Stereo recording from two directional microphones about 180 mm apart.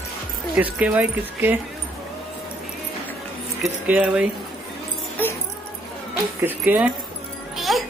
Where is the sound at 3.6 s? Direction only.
5° right (ahead or behind).